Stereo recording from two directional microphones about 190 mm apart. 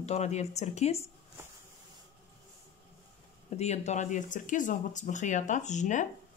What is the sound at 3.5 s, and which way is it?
Speech, 35° left (ahead or behind).